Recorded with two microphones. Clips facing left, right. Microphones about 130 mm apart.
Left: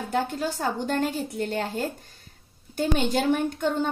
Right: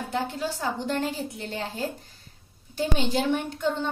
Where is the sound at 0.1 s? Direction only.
50° left (ahead or behind).